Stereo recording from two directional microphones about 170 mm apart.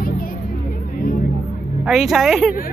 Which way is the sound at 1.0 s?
60° left (ahead or behind).